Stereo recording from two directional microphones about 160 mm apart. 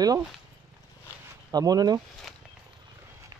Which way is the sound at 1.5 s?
25° right (ahead or behind).